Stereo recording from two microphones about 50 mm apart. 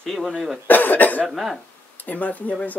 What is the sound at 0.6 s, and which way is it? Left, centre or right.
Speech, left.